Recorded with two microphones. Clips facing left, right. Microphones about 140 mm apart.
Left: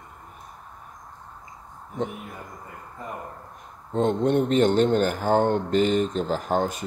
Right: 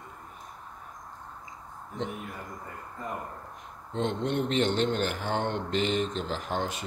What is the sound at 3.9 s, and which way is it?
Speech, 45° left (ahead or behind).